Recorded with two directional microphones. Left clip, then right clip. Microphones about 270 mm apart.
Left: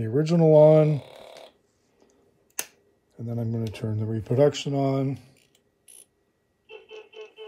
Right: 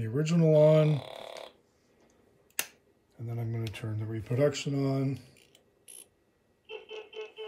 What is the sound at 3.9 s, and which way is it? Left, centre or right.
Speech, left.